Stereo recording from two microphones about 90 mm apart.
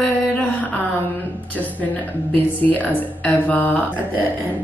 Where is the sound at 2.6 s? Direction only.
20° left (ahead or behind).